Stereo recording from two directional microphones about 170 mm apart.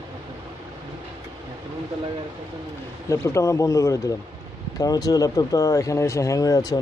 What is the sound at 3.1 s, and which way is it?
Speech, 20° left (ahead or behind).